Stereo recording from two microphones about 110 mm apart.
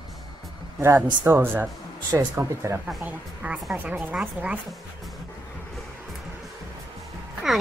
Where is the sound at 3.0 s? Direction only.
15° right (ahead or behind).